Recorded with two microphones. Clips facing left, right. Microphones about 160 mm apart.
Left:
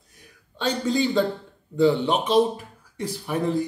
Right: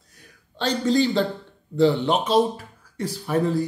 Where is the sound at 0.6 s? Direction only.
10° left (ahead or behind).